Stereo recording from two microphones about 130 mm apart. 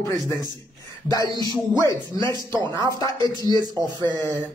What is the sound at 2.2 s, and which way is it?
Speech, 35° right (ahead or behind).